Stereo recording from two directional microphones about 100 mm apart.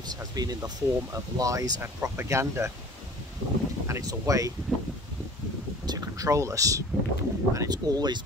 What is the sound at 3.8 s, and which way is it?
Speech, 35° right (ahead or behind).